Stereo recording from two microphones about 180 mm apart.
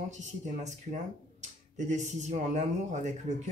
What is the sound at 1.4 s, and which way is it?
Speech, 40° right (ahead or behind).